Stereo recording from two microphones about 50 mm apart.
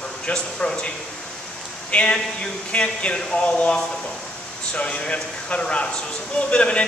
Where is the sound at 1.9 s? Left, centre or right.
Left.